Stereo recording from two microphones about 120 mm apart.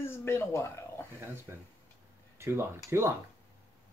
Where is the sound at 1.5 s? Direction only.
15° right (ahead or behind).